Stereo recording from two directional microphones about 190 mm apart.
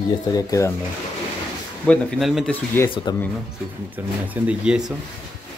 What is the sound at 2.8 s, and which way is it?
Speech, 10° left (ahead or behind).